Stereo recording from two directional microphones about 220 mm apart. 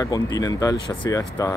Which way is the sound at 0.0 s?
15° left (ahead or behind).